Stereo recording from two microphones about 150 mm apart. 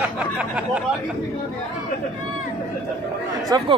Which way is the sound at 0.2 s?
5° right (ahead or behind).